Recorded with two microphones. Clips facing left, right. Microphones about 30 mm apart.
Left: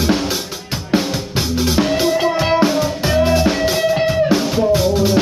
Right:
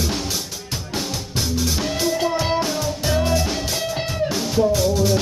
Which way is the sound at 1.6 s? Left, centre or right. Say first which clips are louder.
Left 8 dB; left.